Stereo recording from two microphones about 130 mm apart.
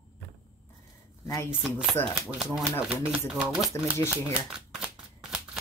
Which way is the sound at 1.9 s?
15° left (ahead or behind).